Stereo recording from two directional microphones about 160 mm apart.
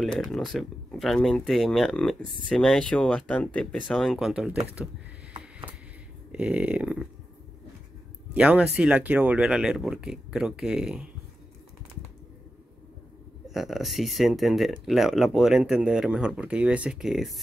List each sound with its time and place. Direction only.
0.0 s speech: 5° left (ahead or behind)
2.2 s speech: 30° right (ahead or behind)
2.5 s speech: 5° left (ahead or behind)
6.3 s speech: 5° right (ahead or behind)
8.3 s speech: 10° right (ahead or behind)
13.5 s speech: centre (ahead or behind)